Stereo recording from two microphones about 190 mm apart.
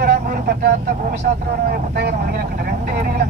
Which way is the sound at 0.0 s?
55° right (ahead or behind).